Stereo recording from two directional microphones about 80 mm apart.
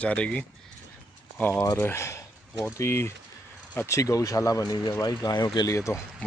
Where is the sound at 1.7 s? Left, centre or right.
Left.